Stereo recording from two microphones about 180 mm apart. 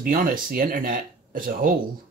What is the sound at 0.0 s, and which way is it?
Speech, 50° right (ahead or behind).